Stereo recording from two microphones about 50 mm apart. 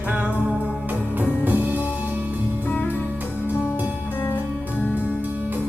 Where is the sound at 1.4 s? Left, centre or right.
Right.